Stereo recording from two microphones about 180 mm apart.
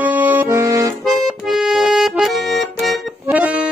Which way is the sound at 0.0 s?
10° right (ahead or behind).